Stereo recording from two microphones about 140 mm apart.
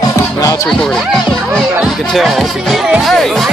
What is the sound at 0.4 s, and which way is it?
Music, 25° left (ahead or behind).